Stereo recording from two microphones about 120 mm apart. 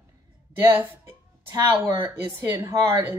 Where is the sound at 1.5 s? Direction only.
25° right (ahead or behind).